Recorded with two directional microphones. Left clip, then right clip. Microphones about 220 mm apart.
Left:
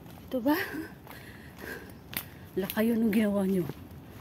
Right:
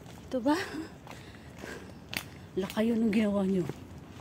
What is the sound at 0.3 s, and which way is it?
Speech, 10° left (ahead or behind).